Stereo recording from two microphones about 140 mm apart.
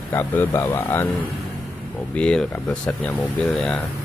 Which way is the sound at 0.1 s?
15° left (ahead or behind).